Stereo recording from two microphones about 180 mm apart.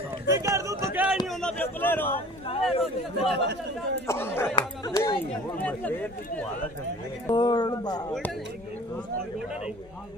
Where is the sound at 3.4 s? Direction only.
70° right (ahead or behind).